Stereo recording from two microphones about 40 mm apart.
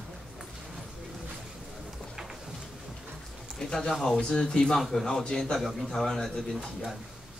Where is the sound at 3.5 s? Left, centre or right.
Centre.